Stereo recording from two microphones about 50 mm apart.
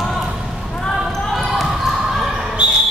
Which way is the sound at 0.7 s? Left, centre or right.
Centre.